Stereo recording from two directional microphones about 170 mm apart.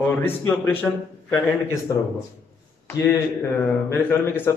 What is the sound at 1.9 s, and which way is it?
Speech, 20° left (ahead or behind).